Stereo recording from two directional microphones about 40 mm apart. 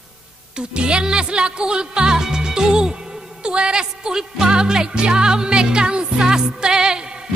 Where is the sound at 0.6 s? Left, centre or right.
Right.